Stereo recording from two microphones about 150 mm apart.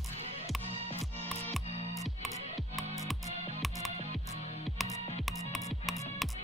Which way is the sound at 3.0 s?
Centre (ahead or behind).